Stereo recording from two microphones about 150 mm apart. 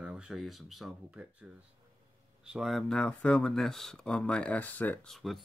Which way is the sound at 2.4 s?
5° right (ahead or behind).